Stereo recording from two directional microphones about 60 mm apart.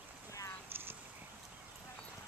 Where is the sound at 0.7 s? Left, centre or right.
Right.